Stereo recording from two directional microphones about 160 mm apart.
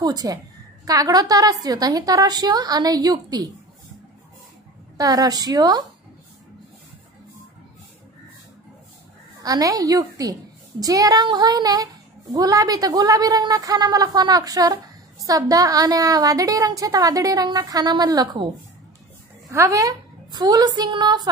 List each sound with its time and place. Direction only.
0.0 s a woman's voice: 25° right (ahead or behind)
4.9 s a woman's voice: 20° right (ahead or behind)
9.4 s a woman's voice: 20° right (ahead or behind)
19.5 s a woman's voice: 20° right (ahead or behind)